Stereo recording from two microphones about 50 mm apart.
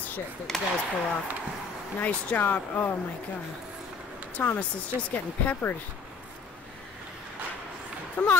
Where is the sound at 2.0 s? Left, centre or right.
Left.